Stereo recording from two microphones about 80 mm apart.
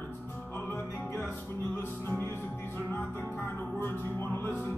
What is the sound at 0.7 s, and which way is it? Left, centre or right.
Music, left.